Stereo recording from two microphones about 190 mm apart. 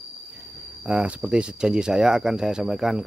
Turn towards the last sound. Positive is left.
turn(degrees=0)  # may be behind; listen again after turning